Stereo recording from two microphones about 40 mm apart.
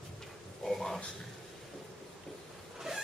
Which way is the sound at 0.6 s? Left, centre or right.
Centre.